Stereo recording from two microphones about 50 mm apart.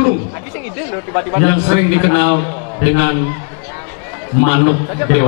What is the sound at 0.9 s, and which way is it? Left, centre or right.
Speech, left.